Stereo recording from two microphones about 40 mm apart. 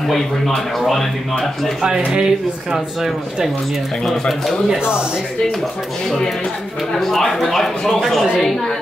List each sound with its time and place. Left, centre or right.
0.7 s a woman's voice: centre
2.0 s speech: centre
4.6 s speech: right
6.0 s a woman's voice: centre